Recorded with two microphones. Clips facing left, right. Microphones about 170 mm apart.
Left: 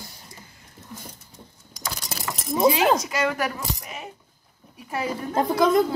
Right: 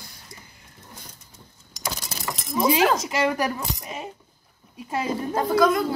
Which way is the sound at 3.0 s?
25° right (ahead or behind).